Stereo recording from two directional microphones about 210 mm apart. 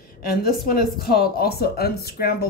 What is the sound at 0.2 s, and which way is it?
Speech, 45° left (ahead or behind).